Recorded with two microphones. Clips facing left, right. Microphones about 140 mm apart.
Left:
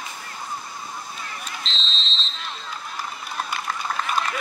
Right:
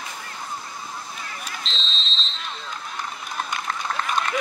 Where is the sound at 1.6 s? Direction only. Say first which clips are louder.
Even; centre (ahead or behind).